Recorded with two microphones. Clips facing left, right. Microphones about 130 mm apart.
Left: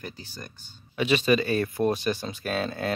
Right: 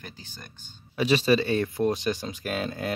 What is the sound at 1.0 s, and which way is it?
Speech, 35° right (ahead or behind).